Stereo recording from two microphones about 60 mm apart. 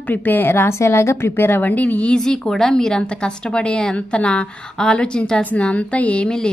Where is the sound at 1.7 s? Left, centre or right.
Left.